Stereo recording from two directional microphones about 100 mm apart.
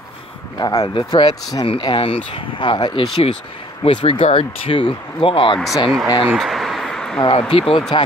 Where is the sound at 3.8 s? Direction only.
65° left (ahead or behind).